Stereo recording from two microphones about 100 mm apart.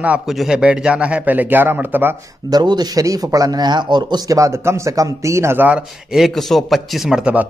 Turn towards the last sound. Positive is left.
turn(degrees=-10)  # may be behind; listen again after turning